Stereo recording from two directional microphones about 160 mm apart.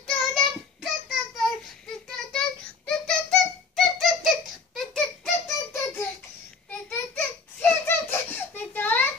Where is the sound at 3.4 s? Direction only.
Centre (ahead or behind).